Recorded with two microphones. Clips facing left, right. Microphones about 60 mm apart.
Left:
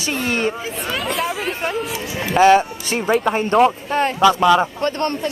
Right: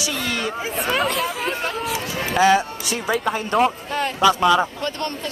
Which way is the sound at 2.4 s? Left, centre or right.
Left.